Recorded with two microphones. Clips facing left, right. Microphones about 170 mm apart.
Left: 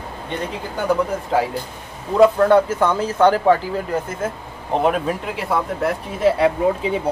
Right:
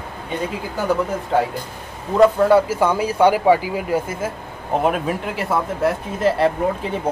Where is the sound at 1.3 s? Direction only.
Centre (ahead or behind).